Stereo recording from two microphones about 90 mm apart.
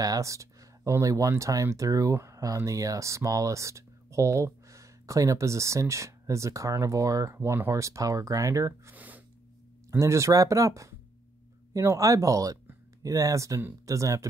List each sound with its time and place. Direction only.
0.0 s speech: 40° right (ahead or behind)
8.9 s gasp: 20° right (ahead or behind)
9.8 s speech: 35° right (ahead or behind)